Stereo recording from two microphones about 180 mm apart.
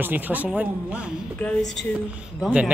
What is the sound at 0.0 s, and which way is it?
A man's voice, 10° right (ahead or behind).